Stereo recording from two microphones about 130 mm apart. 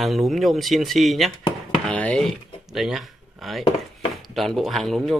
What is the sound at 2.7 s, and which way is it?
A man's voice, centre (ahead or behind).